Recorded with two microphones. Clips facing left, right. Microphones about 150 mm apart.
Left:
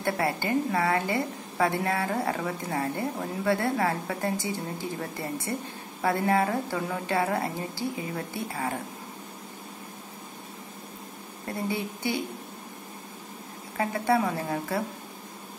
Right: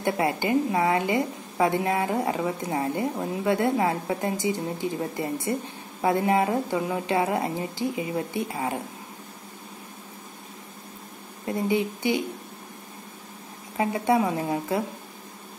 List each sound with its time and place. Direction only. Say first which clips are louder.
0.0 s a woman's voice: right 3 dB; 20° right (ahead or behind)
11.4 s a woman's voice: right 6 dB; 20° right (ahead or behind)
13.7 s a woman's voice: right 2 dB; 20° right (ahead or behind)